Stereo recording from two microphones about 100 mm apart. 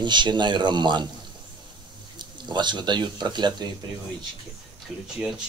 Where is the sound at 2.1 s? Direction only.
50° right (ahead or behind).